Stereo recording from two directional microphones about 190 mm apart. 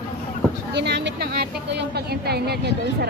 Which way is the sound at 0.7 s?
60° right (ahead or behind).